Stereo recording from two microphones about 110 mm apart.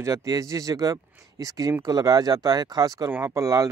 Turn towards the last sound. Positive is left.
turn(degrees=-30)  # may be behind; listen again after turning